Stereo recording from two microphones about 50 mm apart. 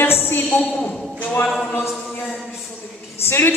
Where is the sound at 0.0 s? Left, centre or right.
Left.